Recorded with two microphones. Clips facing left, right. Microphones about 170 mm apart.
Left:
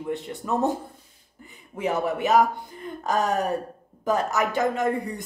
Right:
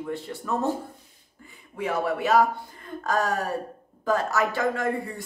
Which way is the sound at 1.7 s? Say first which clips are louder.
Left 1 dB; 20° left (ahead or behind).